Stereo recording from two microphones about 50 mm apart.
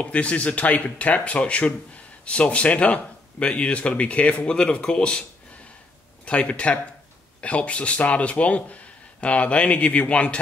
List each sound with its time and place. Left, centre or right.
0.0 s speech: left
6.2 s speech: left